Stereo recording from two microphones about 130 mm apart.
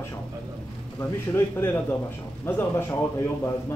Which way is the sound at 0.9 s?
20° left (ahead or behind).